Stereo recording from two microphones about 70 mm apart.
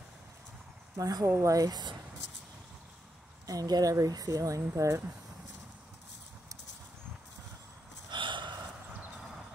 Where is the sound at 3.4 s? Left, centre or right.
Right.